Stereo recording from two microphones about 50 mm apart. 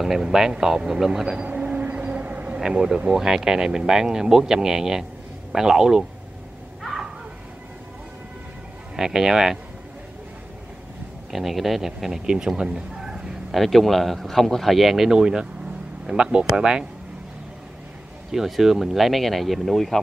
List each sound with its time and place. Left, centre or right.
0.0 s a sound: centre; by 2.6 s right
2.6 s speech: centre
6.8 s a sound: centre
8.9 s speech: centre
11.3 s speech: centre
13.5 s speech: centre
18.3 s speech: centre